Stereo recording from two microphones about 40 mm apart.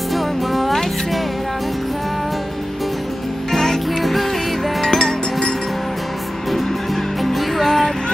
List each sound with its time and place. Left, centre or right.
0.1 s music: centre
3.5 s music: centre
4.8 s music: centre
7.2 s music: centre